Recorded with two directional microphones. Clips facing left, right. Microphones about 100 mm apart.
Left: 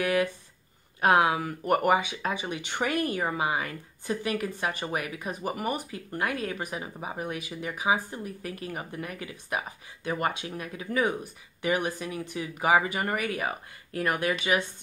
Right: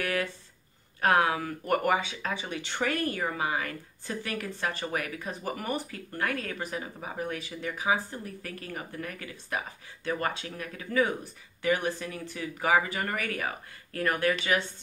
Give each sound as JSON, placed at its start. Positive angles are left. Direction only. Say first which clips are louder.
{"t": 0.0, "sound": "speech", "louder": "left 5 dB", "side_deg": 15}